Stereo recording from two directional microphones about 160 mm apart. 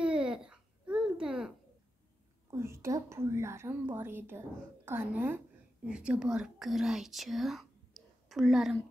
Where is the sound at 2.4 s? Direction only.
15° right (ahead or behind).